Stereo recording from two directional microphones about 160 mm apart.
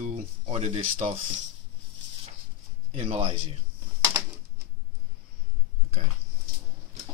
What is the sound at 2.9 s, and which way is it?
Speech, 40° right (ahead or behind).